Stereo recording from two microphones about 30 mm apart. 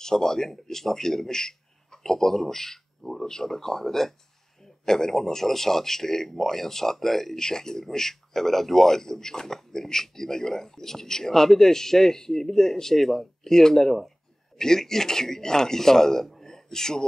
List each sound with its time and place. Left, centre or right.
0.0 s speech: centre
7.3 s speech: centre